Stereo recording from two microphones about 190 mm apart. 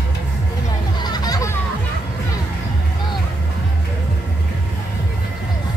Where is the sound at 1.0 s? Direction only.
20° left (ahead or behind).